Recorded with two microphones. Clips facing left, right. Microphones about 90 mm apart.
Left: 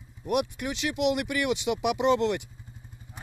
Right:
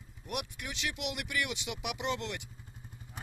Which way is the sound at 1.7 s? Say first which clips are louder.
Left 13 dB; 40° left (ahead or behind).